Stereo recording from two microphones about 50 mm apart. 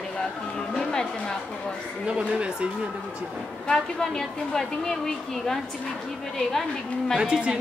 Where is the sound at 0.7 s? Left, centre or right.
Centre.